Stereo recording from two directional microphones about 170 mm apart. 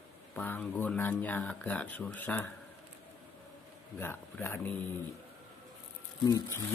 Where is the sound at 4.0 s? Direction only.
15° left (ahead or behind).